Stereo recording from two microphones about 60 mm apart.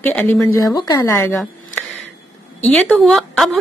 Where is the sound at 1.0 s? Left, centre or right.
Left.